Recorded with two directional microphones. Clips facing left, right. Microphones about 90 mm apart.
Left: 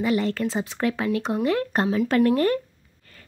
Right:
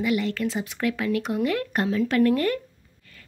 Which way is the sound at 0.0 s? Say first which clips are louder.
Left 1 dB; 35° left (ahead or behind).